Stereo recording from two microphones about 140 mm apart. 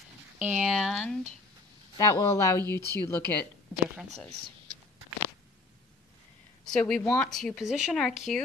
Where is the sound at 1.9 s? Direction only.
25° left (ahead or behind).